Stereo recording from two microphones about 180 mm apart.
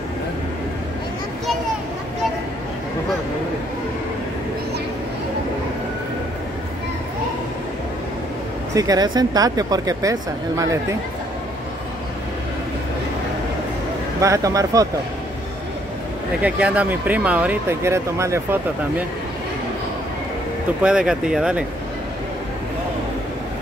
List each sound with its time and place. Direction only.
8.7 s speech: 20° right (ahead or behind)
14.2 s speech: 15° right (ahead or behind)
16.4 s speech: 5° right (ahead or behind)
20.8 s speech: 5° right (ahead or behind)